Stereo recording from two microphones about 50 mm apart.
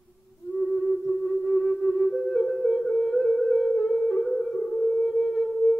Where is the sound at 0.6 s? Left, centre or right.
Centre.